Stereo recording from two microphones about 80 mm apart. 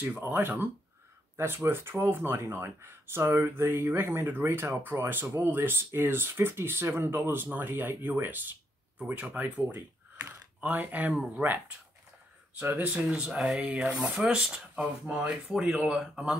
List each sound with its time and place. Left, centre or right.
0.2 s speech: right
12.5 s speech: centre
13.1 s speech: centre
15.5 s speech: centre